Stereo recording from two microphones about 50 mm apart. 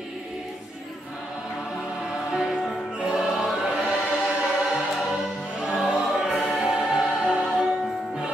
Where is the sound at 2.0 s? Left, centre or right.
Centre.